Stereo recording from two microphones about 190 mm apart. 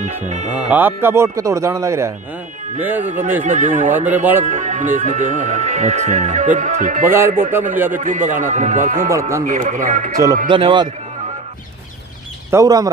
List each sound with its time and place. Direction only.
0.0 s speech: 35° right (ahead or behind)
0.7 s speech: 10° right (ahead or behind)
3.4 s speech: 40° right (ahead or behind)
7.1 s speech: 10° right (ahead or behind)
7.9 s speech: 40° right (ahead or behind)
10.5 s a man's voice: 25° right (ahead or behind)
12.4 s speech: 15° right (ahead or behind)